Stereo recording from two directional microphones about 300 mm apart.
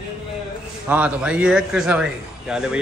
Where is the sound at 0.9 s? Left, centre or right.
Centre.